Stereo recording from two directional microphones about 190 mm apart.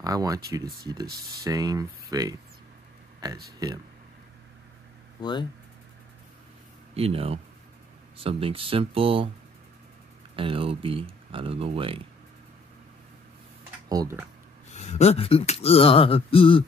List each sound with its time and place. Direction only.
0.0 s speech: 20° right (ahead or behind)
3.5 s speech: 20° right (ahead or behind)
5.2 s speech: 25° left (ahead or behind)
6.9 s speech: 30° right (ahead or behind)
10.3 s speech: 30° right (ahead or behind)
13.8 s speech: 20° right (ahead or behind)
14.7 s speech: 35° left (ahead or behind)